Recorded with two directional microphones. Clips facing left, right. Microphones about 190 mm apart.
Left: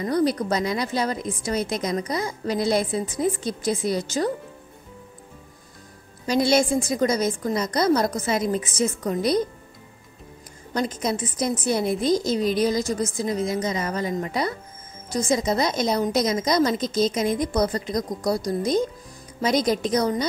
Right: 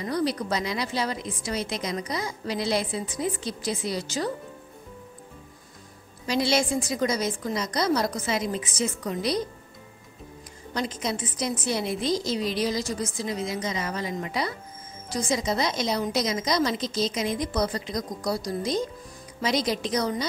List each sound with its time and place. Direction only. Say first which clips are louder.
0.0 s a woman's voice: left 5 dB; 50° left (ahead or behind)
6.2 s a woman's voice: left 4 dB; 50° left (ahead or behind)
10.7 s a woman's voice: left 4 dB; 45° left (ahead or behind)